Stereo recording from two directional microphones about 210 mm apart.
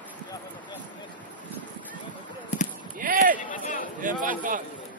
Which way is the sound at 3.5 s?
40° left (ahead or behind).